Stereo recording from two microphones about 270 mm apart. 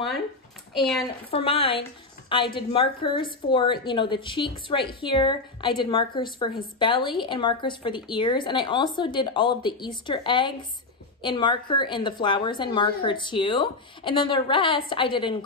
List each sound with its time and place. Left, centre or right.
0.7 s a woman's voice: centre
1.3 s a woman's voice: left